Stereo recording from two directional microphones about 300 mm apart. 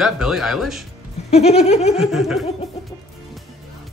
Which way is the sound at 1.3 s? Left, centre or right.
Left.